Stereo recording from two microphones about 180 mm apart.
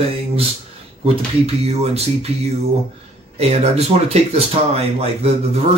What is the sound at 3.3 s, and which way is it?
Speech, 35° right (ahead or behind).